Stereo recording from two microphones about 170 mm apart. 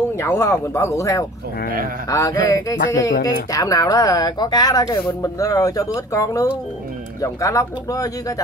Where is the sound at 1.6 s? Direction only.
55° right (ahead or behind).